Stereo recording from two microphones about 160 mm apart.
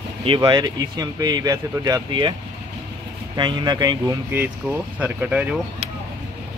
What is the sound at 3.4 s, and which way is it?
Speech, 30° right (ahead or behind).